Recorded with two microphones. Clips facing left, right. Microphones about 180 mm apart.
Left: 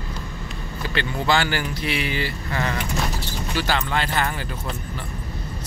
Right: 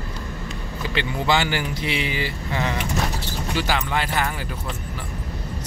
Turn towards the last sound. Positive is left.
turn(degrees=-10)  # may be behind; listen again after turning